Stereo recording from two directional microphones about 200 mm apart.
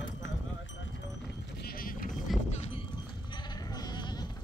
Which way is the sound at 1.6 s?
50° left (ahead or behind).